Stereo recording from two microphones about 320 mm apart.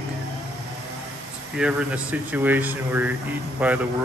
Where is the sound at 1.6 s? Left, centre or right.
Centre.